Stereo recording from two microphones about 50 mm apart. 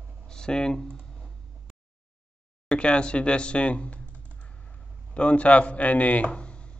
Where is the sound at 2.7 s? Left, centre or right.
Left.